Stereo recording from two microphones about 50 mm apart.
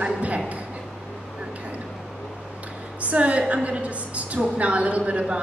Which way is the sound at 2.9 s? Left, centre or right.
Right.